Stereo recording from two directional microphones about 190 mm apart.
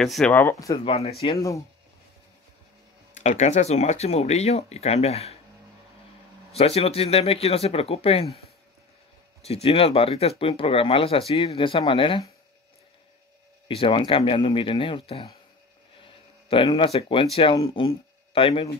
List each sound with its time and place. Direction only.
0.0 s speech: centre (ahead or behind)
0.8 s speech: 30° left (ahead or behind)
3.2 s speech: 40° left (ahead or behind)
6.5 s speech: 30° left (ahead or behind)
9.4 s speech: 30° left (ahead or behind)
13.7 s speech: 30° left (ahead or behind)